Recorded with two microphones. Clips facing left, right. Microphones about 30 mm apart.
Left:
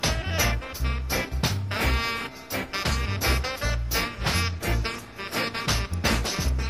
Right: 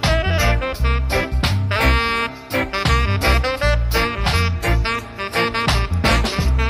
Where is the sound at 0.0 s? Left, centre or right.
Right.